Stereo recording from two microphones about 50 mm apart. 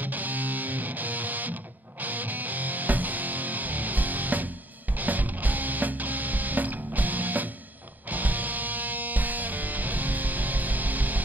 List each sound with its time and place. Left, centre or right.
0.0 s music: right